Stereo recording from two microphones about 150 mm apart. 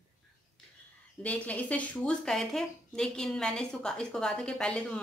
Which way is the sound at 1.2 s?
10° left (ahead or behind).